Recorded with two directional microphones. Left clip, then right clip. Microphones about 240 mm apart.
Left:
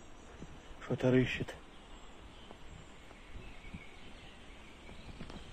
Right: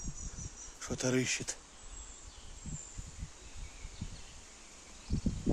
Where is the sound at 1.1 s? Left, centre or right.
Centre.